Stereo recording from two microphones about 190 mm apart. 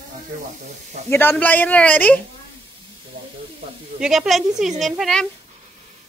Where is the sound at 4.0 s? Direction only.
5° right (ahead or behind).